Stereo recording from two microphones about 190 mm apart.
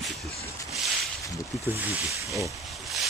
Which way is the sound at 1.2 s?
15° left (ahead or behind).